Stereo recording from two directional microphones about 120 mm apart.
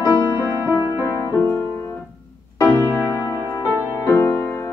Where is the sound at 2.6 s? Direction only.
20° left (ahead or behind).